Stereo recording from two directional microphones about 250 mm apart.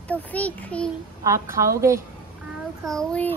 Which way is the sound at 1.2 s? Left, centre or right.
Centre.